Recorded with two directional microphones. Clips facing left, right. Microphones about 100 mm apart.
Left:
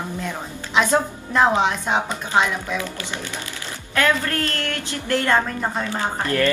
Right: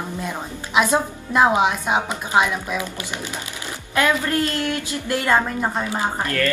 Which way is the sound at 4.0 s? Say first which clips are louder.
Right 1 dB; 15° right (ahead or behind).